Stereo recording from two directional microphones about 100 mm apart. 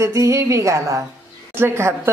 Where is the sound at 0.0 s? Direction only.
30° right (ahead or behind).